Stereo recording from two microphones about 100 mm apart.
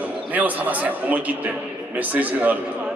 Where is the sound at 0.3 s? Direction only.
15° right (ahead or behind).